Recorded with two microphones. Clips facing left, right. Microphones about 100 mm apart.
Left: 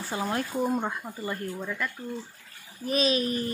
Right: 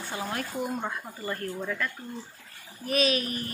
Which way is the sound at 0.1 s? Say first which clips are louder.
Left 4 dB; 30° left (ahead or behind).